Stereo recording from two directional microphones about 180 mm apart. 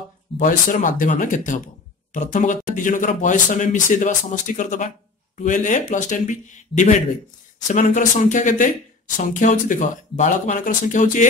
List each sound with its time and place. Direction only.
0.4 s speech: 50° left (ahead or behind)